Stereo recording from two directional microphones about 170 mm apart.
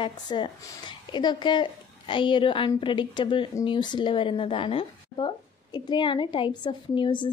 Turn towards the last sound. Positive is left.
turn(degrees=30)  # may be behind; listen again after turning